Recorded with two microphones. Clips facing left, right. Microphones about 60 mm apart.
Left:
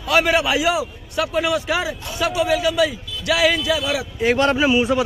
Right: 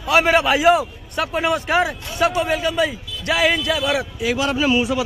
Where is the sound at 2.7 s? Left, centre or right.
Right.